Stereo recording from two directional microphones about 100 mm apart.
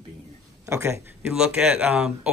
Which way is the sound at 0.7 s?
30° right (ahead or behind).